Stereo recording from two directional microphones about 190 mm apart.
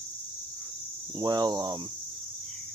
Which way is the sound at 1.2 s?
20° right (ahead or behind).